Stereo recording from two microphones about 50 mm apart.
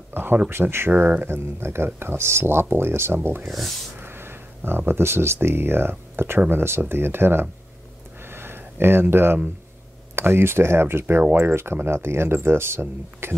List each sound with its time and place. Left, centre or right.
0.1 s speech: right
3.4 s speech: centre
4.0 s a sound: right
4.6 s speech: right
8.2 s a sound: right
10.1 s speech: right